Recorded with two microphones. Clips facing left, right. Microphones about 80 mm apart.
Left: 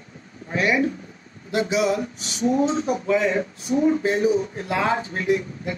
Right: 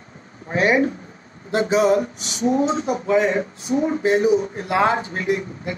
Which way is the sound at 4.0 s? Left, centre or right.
Right.